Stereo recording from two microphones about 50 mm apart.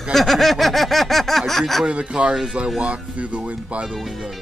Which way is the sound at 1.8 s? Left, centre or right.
Right.